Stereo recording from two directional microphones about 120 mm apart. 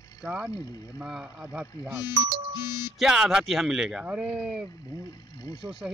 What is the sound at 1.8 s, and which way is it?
Speech, 20° right (ahead or behind).